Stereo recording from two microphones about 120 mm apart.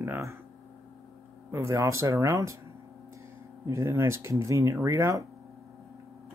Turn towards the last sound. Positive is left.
turn(degrees=-25)  # may be behind; listen again after turning